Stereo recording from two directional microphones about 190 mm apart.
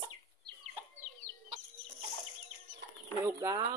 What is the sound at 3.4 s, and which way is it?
Speech, 25° right (ahead or behind).